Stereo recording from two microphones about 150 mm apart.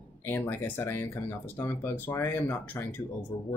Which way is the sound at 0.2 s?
15° left (ahead or behind).